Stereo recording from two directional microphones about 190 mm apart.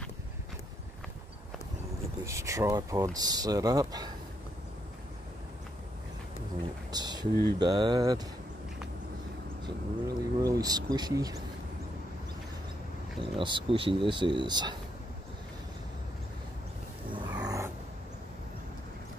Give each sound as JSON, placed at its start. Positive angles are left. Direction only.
{"t": 2.2, "sound": "speech", "side_deg": -15}
{"t": 6.9, "sound": "speech", "side_deg": -20}
{"t": 10.0, "sound": "speech", "side_deg": -20}
{"t": 13.2, "sound": "speech", "side_deg": -25}
{"t": 17.1, "sound": "a sound", "side_deg": -20}